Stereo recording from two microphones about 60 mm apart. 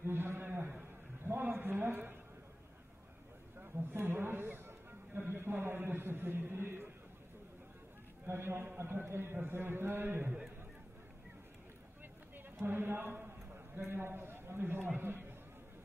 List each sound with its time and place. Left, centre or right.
0.0 s a sound: right
1.2 s a woman's voice: right
3.6 s speech: right
8.3 s a man's voice: right
12.4 s a man's voice: right
13.7 s a man's voice: right